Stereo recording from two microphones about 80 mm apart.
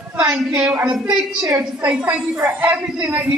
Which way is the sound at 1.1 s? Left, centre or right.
Right.